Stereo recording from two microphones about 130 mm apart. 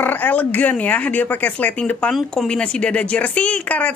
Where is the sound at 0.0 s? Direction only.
15° left (ahead or behind).